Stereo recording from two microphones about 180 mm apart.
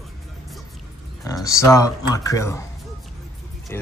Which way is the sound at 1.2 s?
20° left (ahead or behind).